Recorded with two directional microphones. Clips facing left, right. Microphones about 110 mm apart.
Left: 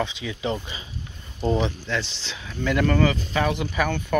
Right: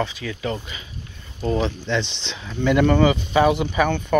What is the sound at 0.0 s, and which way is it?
Speech, 15° left (ahead or behind).